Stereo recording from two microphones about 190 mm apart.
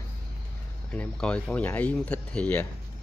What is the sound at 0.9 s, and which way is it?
Speech, 5° left (ahead or behind).